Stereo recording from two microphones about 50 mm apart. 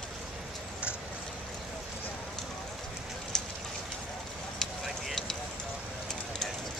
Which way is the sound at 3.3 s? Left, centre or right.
Centre.